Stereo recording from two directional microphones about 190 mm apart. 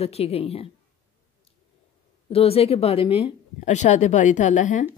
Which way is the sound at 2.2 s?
30° left (ahead or behind).